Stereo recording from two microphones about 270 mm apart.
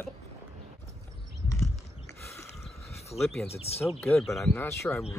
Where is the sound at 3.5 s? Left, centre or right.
Left.